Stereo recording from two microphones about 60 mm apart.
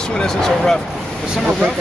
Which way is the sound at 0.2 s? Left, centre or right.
Centre.